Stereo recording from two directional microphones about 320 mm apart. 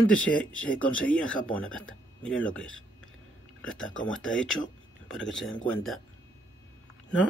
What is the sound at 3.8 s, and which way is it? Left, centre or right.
Speech, left.